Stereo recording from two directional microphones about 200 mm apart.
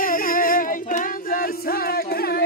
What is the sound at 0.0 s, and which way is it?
Singing, 45° left (ahead or behind).